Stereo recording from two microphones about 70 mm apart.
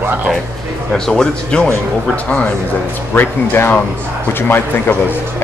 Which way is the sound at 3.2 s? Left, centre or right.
Left.